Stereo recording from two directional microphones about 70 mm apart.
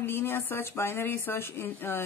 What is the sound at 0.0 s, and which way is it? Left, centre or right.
Speech, left.